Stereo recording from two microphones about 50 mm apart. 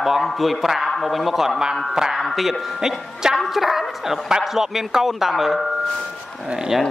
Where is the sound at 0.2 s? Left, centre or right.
Centre.